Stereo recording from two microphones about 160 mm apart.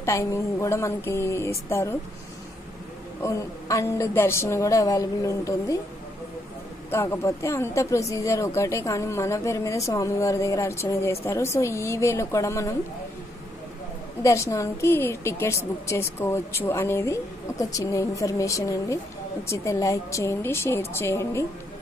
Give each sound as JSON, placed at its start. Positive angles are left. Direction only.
{"t": 0.0, "sound": "speech", "side_deg": 20}
{"t": 3.2, "sound": "a woman's voice", "side_deg": 20}
{"t": 6.9, "sound": "speech", "side_deg": 15}
{"t": 14.2, "sound": "a woman's voice", "side_deg": 20}